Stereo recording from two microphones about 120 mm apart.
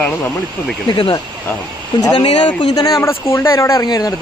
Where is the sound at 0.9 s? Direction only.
40° left (ahead or behind).